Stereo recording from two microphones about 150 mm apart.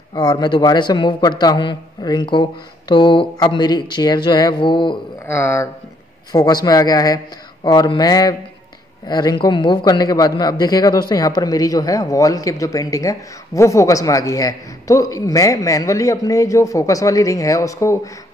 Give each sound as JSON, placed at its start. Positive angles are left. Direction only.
{"t": 0.1, "sound": "a man's voice", "side_deg": 30}
{"t": 5.2, "sound": "speech", "side_deg": 15}
{"t": 6.3, "sound": "a man's voice", "side_deg": 25}